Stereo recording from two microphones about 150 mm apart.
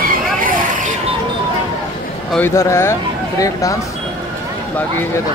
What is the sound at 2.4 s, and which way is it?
Speech, 15° left (ahead or behind).